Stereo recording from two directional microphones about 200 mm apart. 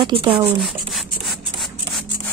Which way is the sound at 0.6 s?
Centre (ahead or behind).